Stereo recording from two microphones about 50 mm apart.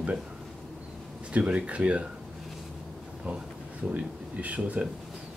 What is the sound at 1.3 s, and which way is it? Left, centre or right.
Speech, right.